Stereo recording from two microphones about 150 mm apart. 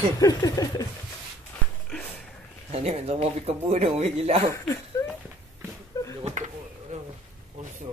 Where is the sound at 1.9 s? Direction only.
5° left (ahead or behind).